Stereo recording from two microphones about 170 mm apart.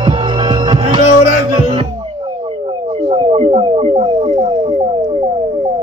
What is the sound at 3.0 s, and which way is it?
Music, 30° right (ahead or behind).